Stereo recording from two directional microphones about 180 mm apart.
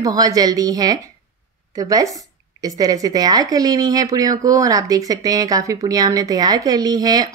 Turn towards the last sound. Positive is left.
turn(degrees=-20)  # may be behind; listen again after turning